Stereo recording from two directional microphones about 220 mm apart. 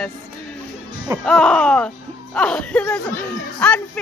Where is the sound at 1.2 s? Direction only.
5° left (ahead or behind).